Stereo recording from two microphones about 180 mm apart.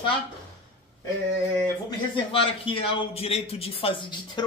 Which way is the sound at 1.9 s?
30° left (ahead or behind).